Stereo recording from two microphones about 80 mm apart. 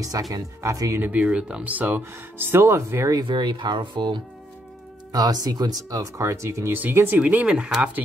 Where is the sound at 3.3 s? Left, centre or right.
Right.